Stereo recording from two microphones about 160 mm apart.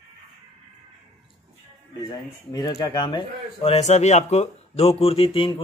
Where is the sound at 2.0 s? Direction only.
25° left (ahead or behind).